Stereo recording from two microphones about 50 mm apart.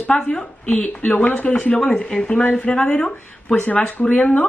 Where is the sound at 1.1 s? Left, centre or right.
Left.